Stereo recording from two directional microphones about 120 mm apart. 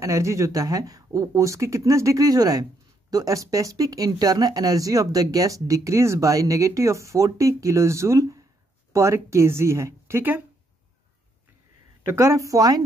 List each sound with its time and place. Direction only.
0.0 s speech: 25° right (ahead or behind)
12.2 s speech: 25° right (ahead or behind)